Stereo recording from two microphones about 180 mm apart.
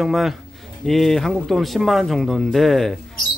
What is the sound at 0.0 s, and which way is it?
Speech, centre (ahead or behind).